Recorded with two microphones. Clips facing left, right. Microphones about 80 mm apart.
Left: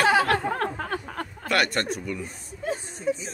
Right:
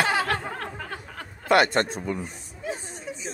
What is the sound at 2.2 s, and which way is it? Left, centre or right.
Chuckle, left.